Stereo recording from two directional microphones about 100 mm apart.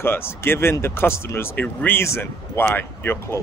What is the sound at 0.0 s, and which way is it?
Speech, 25° left (ahead or behind).